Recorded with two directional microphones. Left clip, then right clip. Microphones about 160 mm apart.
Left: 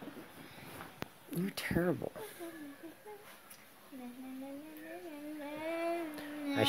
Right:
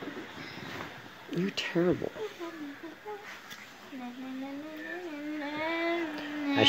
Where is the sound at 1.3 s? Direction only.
50° left (ahead or behind).